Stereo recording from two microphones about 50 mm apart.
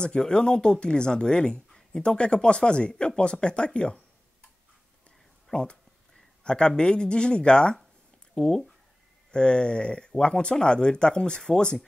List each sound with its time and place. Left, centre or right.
0.0 s speech: centre
5.5 s a sound: centre
6.8 s speech: centre